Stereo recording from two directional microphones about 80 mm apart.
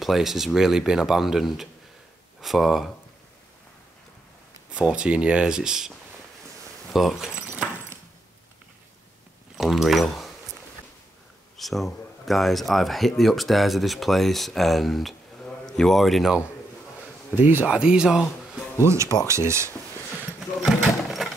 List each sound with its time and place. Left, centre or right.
0.0 s speech: centre
4.7 s speech: centre
7.3 s keys jangling: centre
9.6 s speech: centre
11.5 s speech: centre
17.4 s speech: right
17.6 s speech: centre
18.8 s speech: right
20.3 s a sound: centre